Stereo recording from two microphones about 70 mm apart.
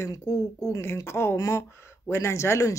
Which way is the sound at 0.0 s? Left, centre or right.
Left.